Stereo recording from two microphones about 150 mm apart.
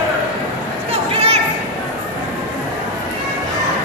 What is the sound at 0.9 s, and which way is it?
Children playing, 40° right (ahead or behind).